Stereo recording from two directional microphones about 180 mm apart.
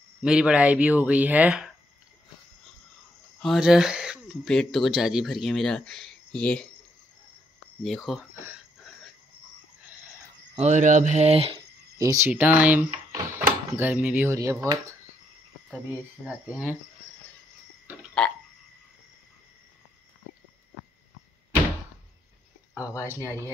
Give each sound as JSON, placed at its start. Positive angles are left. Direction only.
{"t": 0.2, "sound": "speech", "side_deg": -5}
{"t": 3.3, "sound": "speech", "side_deg": 0}
{"t": 7.8, "sound": "speech", "side_deg": 0}
{"t": 8.5, "sound": "a sound", "side_deg": 0}
{"t": 10.6, "sound": "speech", "side_deg": -40}
{"t": 12.0, "sound": "speech", "side_deg": -15}
{"t": 16.3, "sound": "speech", "side_deg": -5}
{"t": 18.2, "sound": "burping", "side_deg": 5}